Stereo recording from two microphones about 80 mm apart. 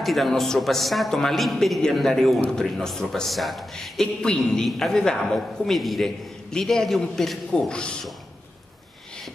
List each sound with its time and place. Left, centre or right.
0.0 s speech: centre